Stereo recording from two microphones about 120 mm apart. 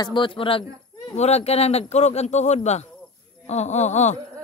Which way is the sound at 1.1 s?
65° left (ahead or behind).